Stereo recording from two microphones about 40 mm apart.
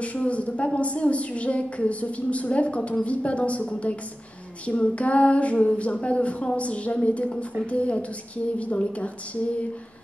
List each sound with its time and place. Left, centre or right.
0.0 s a woman's voice: left